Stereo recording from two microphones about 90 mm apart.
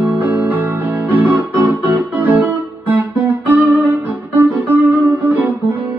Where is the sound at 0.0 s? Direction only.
20° right (ahead or behind).